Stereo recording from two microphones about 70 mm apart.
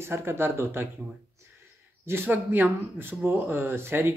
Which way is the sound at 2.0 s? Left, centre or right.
Right.